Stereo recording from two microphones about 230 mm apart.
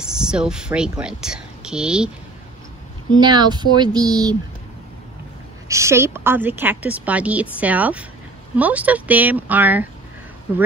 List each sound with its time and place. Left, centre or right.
0.0 s speech: centre
3.2 s speech: centre
5.7 s a woman's voice: centre